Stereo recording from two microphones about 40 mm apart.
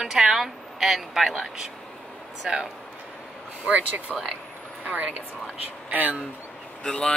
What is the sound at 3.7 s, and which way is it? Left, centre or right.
A woman's voice, right.